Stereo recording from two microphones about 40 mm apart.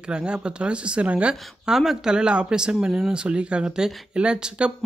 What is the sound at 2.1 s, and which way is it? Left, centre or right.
Speech, right.